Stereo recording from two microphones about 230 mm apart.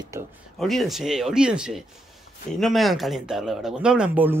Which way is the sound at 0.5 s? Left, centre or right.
Centre.